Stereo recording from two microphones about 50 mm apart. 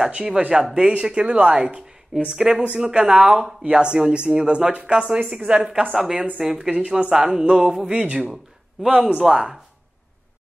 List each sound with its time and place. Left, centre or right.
0.4 s a woman's voice: right
5.9 s speech: centre
9.2 s speech: centre